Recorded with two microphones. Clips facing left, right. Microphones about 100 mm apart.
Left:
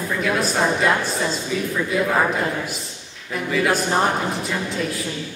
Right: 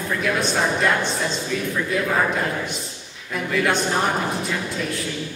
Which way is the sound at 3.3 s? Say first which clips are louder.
Left 1 dB; centre (ahead or behind).